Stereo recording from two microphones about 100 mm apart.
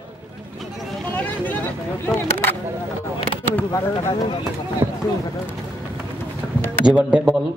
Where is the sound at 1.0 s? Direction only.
15° left (ahead or behind).